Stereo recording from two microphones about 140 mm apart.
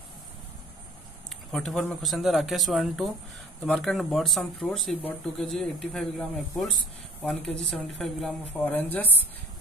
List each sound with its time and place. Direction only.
1.5 s speech: centre (ahead or behind)